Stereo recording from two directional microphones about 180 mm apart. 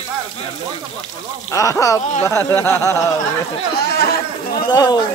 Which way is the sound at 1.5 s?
15° left (ahead or behind).